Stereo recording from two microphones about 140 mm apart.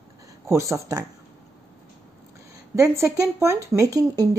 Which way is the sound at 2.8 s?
20° right (ahead or behind).